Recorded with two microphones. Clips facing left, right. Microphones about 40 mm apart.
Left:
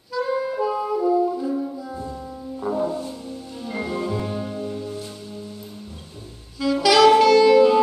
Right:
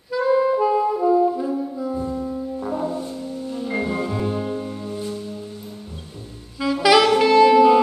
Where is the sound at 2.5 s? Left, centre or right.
Centre.